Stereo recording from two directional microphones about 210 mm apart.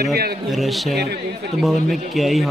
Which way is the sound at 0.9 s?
50° right (ahead or behind).